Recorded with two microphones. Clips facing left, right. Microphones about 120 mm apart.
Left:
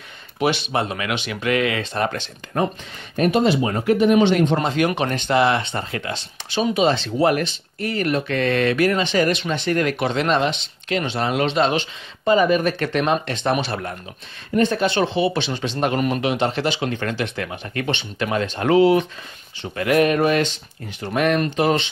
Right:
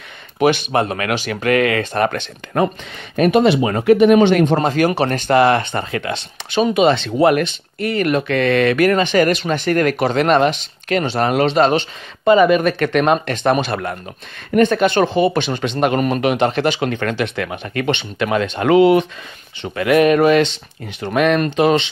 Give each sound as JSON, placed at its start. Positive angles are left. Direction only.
{"t": 0.4, "sound": "speech", "side_deg": -50}
{"t": 2.0, "sound": "speech", "side_deg": -65}
{"t": 4.6, "sound": "speech", "side_deg": -40}
{"t": 5.9, "sound": "speech", "side_deg": -75}
{"t": 11.1, "sound": "speech", "side_deg": -55}
{"t": 11.4, "sound": "speech", "side_deg": -40}
{"t": 12.3, "sound": "speech", "side_deg": -80}
{"t": 19.6, "sound": "speech", "side_deg": -90}